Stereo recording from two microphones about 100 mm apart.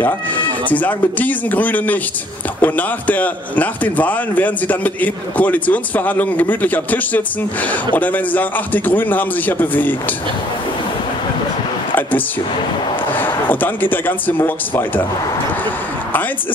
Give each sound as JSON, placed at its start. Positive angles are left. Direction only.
{"t": 0.0, "sound": "a man's voice", "side_deg": 15}
{"t": 13.1, "sound": "a man's voice", "side_deg": 20}